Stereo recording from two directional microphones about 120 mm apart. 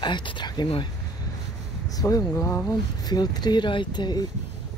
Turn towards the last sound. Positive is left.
turn(degrees=35)  # may be behind; listen again after turning